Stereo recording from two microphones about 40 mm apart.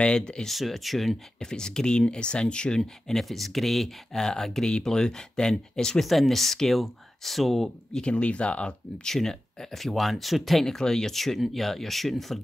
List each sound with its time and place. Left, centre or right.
0.0 s speech: left
0.5 s speech: centre
1.4 s speech: centre
2.8 s speech: centre
6.0 s speech: centre
7.9 s speech: left
9.0 s speech: centre